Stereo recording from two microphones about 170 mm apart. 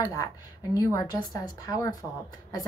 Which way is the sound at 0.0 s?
20° left (ahead or behind).